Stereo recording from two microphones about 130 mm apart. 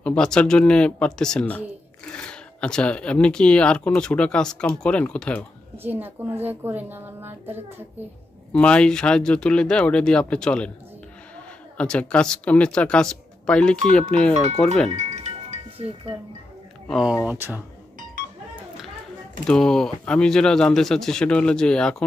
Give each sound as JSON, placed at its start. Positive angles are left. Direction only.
{"t": 0.0, "sound": "speech", "side_deg": 5}
{"t": 5.8, "sound": "a woman's voice", "side_deg": -15}
{"t": 8.5, "sound": "speech", "side_deg": 10}
{"t": 11.7, "sound": "speech", "side_deg": 10}
{"t": 14.9, "sound": "chime", "side_deg": -60}
{"t": 16.8, "sound": "a woman's voice", "side_deg": 0}
{"t": 19.4, "sound": "speech", "side_deg": 5}